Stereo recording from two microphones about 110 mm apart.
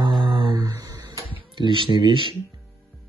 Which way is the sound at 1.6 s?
50° right (ahead or behind).